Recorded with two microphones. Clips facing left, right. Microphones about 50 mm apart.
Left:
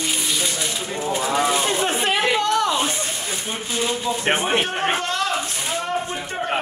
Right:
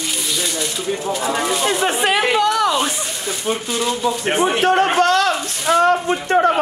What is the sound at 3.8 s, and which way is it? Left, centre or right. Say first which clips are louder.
Speech: right 2 dB; left.